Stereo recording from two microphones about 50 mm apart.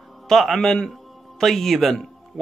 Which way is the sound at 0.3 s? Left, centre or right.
Centre.